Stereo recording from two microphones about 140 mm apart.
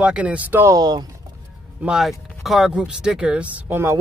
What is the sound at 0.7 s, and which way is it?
Speech, 30° right (ahead or behind).